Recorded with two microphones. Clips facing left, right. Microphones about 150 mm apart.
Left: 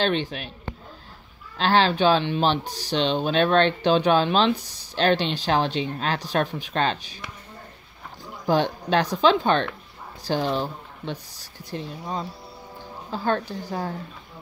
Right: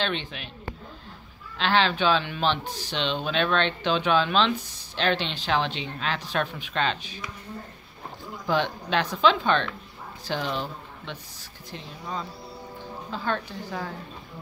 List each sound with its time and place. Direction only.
0.0 s speech: 40° left (ahead or behind)
1.6 s speech: 35° left (ahead or behind)
8.5 s speech: 35° left (ahead or behind)